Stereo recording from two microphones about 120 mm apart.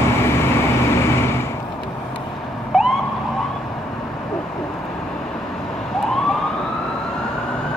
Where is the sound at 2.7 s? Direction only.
Centre (ahead or behind).